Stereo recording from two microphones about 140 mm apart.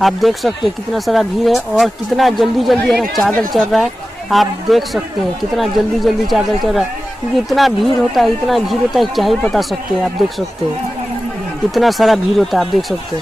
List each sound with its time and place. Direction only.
0.0 s speech: centre (ahead or behind)
6.3 s speech: centre (ahead or behind)
11.7 s speech: centre (ahead or behind)